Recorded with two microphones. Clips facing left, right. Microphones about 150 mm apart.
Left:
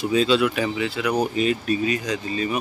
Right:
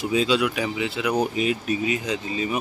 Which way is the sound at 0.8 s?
20° right (ahead or behind).